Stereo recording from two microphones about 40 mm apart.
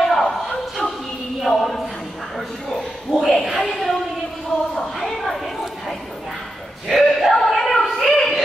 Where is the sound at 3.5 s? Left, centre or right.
Centre.